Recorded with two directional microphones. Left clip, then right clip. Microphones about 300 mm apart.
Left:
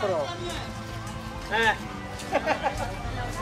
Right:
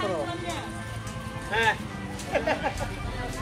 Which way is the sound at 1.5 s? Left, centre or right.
Left.